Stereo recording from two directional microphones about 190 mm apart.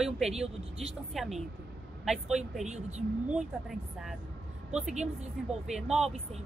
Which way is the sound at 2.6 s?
35° right (ahead or behind).